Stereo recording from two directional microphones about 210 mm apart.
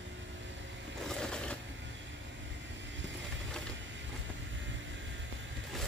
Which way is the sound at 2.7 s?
60° right (ahead or behind).